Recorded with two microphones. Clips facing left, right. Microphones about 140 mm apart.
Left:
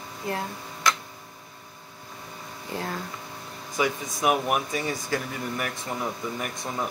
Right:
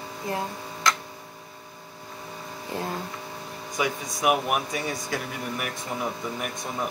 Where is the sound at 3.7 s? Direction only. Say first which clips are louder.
Left 2 dB; 5° right (ahead or behind).